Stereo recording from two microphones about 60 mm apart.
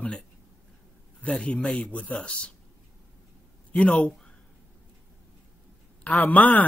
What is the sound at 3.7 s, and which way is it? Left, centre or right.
Speech, centre.